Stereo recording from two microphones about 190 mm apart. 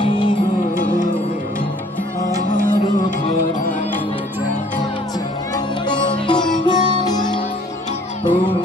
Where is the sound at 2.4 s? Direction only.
45° left (ahead or behind).